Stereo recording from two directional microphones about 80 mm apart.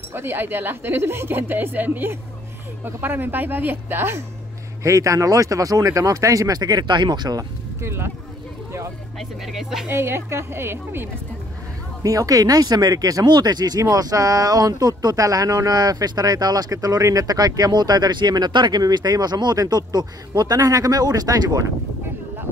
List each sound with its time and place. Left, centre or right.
0.1 s speech: right
4.8 s speech: right
7.8 s a woman's voice: right
9.2 s speech: centre
9.8 s a woman's voice: right
12.0 s speech: right